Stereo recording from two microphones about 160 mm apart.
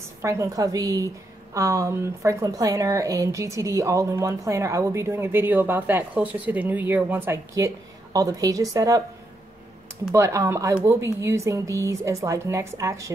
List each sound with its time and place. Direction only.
0.2 s a woman's voice: 20° right (ahead or behind)
10.1 s a woman's voice: 20° right (ahead or behind)